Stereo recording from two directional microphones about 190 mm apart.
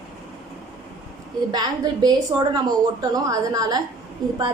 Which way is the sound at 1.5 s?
20° right (ahead or behind).